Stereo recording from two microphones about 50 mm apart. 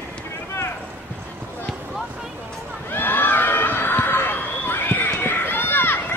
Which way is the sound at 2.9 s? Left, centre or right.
Left.